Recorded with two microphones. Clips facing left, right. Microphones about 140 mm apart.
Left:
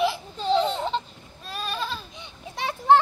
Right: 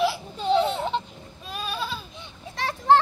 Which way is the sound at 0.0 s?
5° right (ahead or behind).